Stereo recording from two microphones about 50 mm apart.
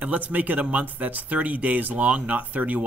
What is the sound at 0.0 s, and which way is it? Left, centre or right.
Speech, right.